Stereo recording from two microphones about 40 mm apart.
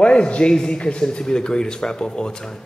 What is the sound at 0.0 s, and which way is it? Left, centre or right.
Speech, left.